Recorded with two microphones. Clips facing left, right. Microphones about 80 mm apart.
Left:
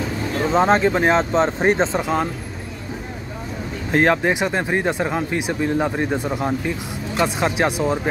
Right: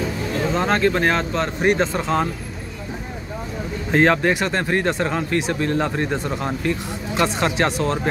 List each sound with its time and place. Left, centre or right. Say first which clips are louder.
0.5 s speech: left 4 dB; left
3.9 s speech: even; centre